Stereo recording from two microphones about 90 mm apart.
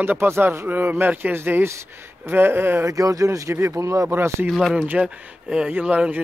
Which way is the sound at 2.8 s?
40° right (ahead or behind).